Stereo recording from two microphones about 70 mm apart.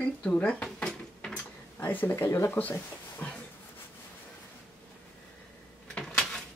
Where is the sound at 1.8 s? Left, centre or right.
Left.